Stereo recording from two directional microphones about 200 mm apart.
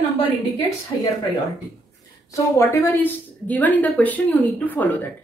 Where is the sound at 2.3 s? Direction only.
15° left (ahead or behind).